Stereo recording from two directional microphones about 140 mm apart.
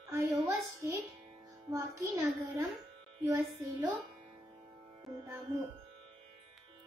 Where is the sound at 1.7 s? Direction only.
25° right (ahead or behind).